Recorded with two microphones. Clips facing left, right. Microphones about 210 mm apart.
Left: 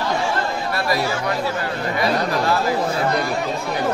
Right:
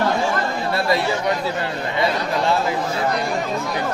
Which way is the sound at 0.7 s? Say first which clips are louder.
Right 2 dB; 25° right (ahead or behind).